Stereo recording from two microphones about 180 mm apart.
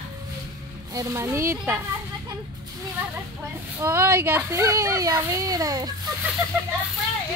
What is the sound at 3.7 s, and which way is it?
A child's voice, 15° right (ahead or behind).